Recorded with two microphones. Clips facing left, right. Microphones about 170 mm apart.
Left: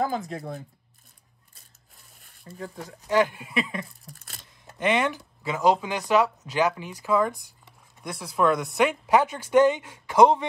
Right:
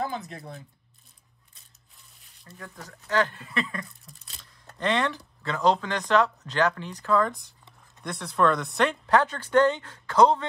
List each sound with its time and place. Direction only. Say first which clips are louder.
0.3 s speech: left 7 dB; 40° left (ahead or behind)
2.5 s speech: left 6 dB; 30° left (ahead or behind)
3.1 s speech: left 3 dB; 15° left (ahead or behind)